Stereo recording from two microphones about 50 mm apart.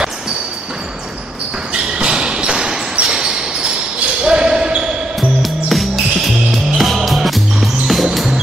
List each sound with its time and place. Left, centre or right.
1.7 s a sound: centre
4.2 s basketball bounce: centre
5.4 s music: centre